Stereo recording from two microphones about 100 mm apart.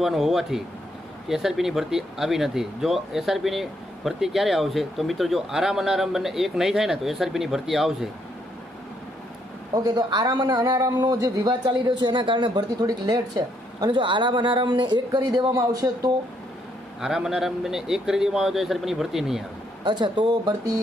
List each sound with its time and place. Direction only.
0.0 s speech: 5° right (ahead or behind)
9.8 s a man's voice: 40° right (ahead or behind)
17.0 s speech: 5° right (ahead or behind)
19.8 s a man's voice: 50° right (ahead or behind)